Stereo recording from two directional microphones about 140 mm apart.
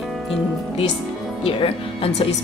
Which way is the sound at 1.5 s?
45° left (ahead or behind).